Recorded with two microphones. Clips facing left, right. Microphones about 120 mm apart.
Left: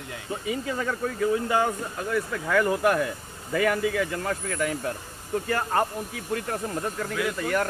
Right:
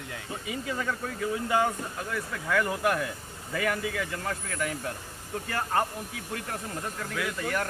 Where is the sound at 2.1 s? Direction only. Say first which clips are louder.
Left 5 dB; 50° left (ahead or behind).